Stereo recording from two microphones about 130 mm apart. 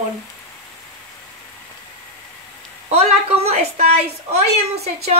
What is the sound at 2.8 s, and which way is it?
A woman's voice, 50° right (ahead or behind).